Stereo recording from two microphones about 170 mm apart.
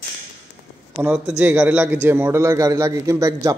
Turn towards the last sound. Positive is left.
turn(degrees=-20)  # may be behind; listen again after turning